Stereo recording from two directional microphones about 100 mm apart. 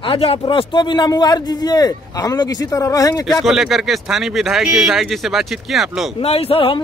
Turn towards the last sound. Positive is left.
turn(degrees=70)  # may be behind; listen again after turning